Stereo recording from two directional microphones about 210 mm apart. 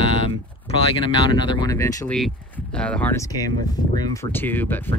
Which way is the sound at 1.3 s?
20° left (ahead or behind).